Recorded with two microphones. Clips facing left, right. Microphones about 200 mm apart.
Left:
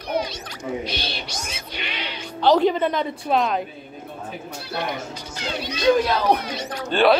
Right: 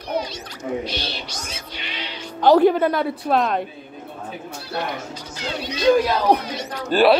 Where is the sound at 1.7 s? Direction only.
65° left (ahead or behind).